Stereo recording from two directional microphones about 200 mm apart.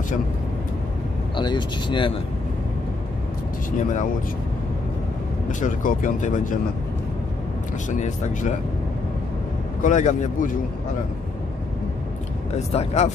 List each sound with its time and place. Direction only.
1.3 s speech: 25° left (ahead or behind)
5.5 s speech: 40° left (ahead or behind)
7.9 s speech: 35° left (ahead or behind)
9.8 s speech: 40° left (ahead or behind)
12.5 s speech: 35° left (ahead or behind)